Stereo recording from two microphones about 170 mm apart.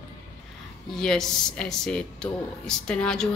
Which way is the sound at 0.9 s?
5° left (ahead or behind).